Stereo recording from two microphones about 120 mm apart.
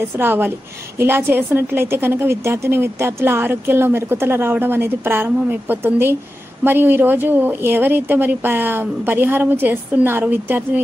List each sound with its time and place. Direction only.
0.2 s a woman's voice: 15° right (ahead or behind)